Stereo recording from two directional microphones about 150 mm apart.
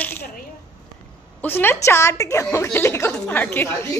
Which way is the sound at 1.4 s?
15° left (ahead or behind).